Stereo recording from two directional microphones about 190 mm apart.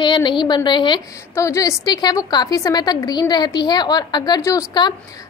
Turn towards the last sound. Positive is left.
turn(degrees=20)  # may be behind; listen again after turning